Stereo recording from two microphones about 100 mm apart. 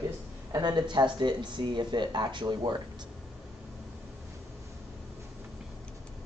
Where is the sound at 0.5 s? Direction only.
45° right (ahead or behind).